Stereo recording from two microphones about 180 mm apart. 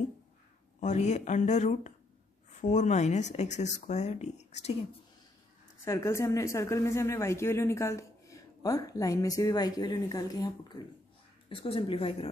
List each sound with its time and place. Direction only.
0.7 s speech: 40° left (ahead or behind)
5.9 s speech: 15° left (ahead or behind); by 12.3 s 30° left (ahead or behind)